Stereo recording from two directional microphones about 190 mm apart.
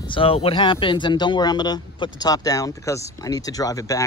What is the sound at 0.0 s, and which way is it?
Speech, 25° left (ahead or behind).